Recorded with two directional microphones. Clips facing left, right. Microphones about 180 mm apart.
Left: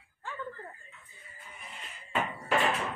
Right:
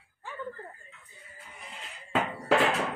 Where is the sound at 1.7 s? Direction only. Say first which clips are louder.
Right 4 dB; 90° right.